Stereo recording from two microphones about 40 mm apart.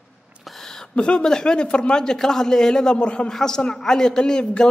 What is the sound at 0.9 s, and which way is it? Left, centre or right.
Speech, left.